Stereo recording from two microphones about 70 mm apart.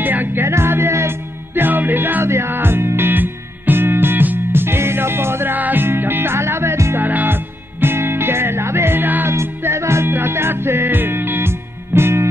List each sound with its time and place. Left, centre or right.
0.0 s music: right
9.3 s music: right